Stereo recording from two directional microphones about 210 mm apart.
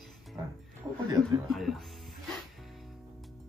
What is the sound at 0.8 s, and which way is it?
Speech, 15° right (ahead or behind).